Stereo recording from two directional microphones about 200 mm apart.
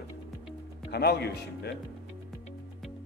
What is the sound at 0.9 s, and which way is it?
Speech, 55° left (ahead or behind).